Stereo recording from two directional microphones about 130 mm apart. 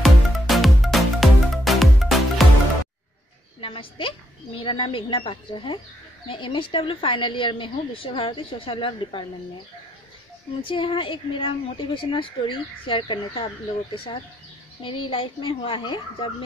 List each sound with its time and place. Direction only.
0.0 s music: centre (ahead or behind)
3.6 s a sound: 45° left (ahead or behind)
4.6 s a woman's voice: 45° left (ahead or behind)
10.7 s a woman's voice: 40° left (ahead or behind)
14.8 s a woman's voice: 40° left (ahead or behind)